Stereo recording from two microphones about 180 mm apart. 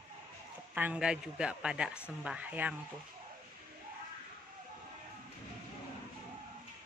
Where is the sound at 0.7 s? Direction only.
10° right (ahead or behind).